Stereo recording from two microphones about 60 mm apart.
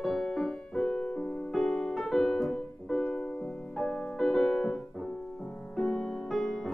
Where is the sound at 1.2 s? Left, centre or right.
Left.